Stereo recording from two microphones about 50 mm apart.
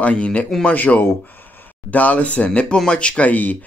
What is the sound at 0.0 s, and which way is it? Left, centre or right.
Speech, left.